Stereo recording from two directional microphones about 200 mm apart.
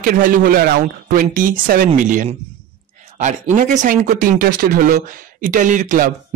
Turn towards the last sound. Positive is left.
turn(degrees=-40)  # may be behind; listen again after turning